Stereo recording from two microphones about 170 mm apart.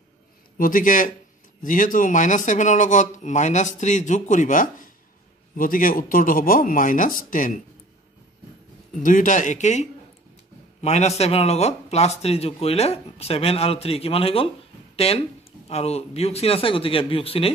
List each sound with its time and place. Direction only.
0.6 s speech: 55° left (ahead or behind)
9.0 s speech: 50° left (ahead or behind); by 17.5 s 35° left (ahead or behind)